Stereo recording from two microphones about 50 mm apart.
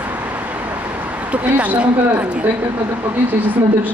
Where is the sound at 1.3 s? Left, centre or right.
Right.